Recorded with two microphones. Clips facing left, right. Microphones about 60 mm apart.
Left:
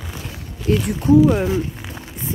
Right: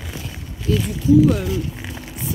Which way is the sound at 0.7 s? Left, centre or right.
Left.